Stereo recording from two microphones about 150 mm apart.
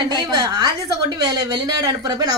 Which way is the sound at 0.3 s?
25° right (ahead or behind).